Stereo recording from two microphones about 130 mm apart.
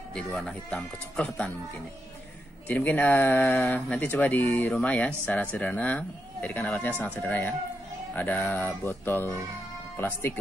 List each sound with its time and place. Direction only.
0.1 s speech: 5° left (ahead or behind)
2.7 s speech: 15° left (ahead or behind)